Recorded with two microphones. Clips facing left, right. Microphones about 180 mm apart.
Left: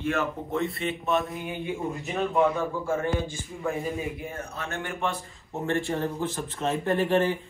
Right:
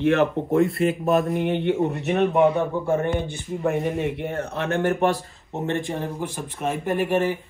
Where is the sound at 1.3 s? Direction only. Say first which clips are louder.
Right 10 dB; 70° right (ahead or behind).